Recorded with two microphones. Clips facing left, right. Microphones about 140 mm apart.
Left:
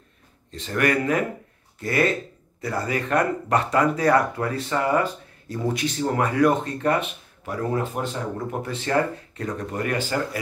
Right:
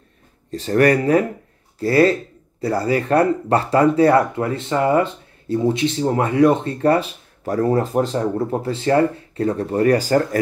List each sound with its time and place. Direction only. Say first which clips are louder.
0.5 s speech: right 8 dB; 40° right (ahead or behind)